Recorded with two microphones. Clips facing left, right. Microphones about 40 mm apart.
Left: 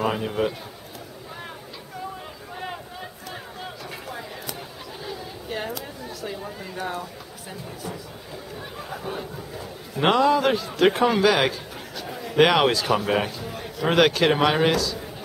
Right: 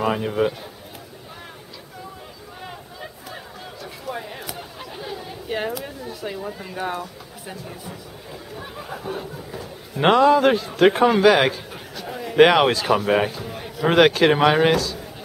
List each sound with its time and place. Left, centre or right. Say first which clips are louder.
0.0 s speech: right 3 dB; centre
4.1 s a sound: right 7 dB; centre
5.7 s speech: right 4 dB; centre
6.8 s speech: right 3 dB; centre
8.5 s a man's voice: right 2 dB; centre